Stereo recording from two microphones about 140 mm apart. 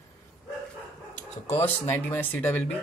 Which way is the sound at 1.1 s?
45° left (ahead or behind).